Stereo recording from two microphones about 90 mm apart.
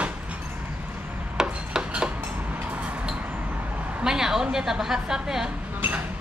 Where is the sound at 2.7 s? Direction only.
15° right (ahead or behind).